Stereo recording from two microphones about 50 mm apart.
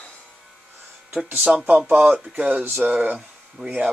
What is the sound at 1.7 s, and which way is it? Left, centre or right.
Speech, right.